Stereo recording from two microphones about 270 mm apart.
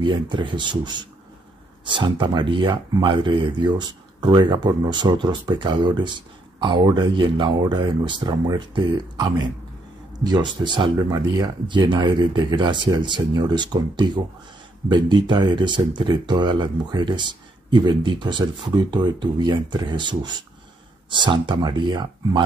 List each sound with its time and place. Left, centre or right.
0.0 s speech: centre
10.6 s speech: centre
21.2 s speech: centre